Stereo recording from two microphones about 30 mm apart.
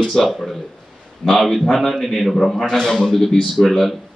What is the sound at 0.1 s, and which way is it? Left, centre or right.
Speech, centre.